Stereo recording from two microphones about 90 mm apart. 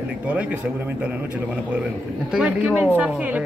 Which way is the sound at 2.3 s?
10° right (ahead or behind).